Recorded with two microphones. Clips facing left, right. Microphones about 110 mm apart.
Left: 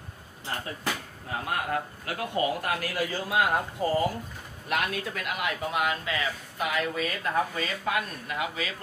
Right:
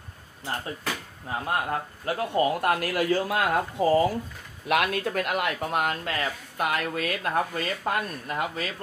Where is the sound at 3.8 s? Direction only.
90° right.